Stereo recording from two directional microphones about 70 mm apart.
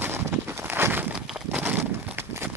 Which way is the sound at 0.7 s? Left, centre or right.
Right.